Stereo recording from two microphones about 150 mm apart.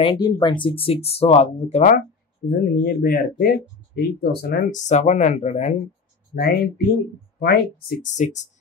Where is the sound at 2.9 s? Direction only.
70° left (ahead or behind).